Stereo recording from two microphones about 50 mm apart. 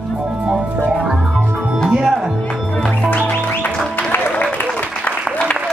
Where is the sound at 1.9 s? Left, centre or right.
Centre.